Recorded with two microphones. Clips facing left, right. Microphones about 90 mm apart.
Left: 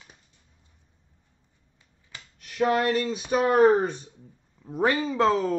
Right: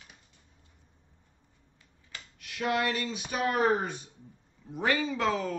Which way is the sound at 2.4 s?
40° left (ahead or behind).